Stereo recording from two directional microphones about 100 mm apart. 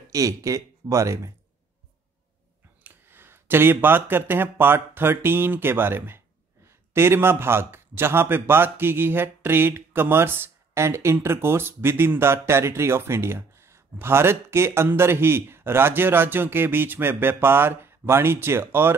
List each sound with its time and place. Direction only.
0.1 s speech: 35° right (ahead or behind)
2.8 s a man's voice: 20° right (ahead or behind)